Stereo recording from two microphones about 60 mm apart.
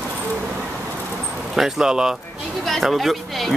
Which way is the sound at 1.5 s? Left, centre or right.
Centre.